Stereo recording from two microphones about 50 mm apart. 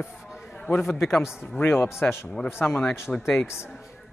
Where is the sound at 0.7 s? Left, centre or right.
Left.